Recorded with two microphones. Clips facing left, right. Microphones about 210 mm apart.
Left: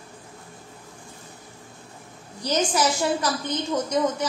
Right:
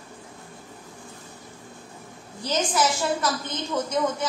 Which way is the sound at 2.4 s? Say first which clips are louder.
Left 1 dB; 15° left (ahead or behind).